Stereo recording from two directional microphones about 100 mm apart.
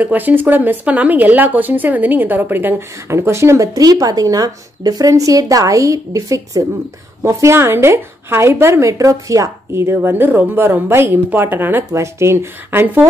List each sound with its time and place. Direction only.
0.0 s speech: 20° right (ahead or behind)